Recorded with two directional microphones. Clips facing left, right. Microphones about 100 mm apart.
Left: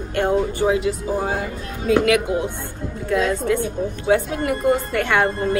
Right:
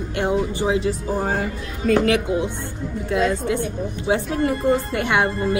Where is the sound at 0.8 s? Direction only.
40° right (ahead or behind).